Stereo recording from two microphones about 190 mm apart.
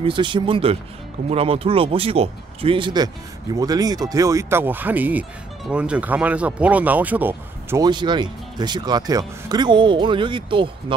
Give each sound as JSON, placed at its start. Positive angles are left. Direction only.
{"t": 0.0, "sound": "speech", "side_deg": -25}
{"t": 7.8, "sound": "speech", "side_deg": -25}